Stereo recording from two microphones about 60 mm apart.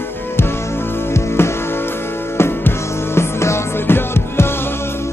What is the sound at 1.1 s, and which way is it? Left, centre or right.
Music, left.